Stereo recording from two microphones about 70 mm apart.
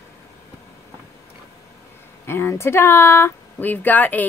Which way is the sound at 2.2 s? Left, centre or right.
Left.